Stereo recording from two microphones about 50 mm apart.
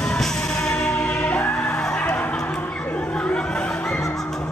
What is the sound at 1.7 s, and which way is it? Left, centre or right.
Music, centre.